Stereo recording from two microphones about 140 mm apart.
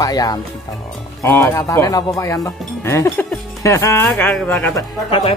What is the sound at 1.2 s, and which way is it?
Speech, 15° left (ahead or behind).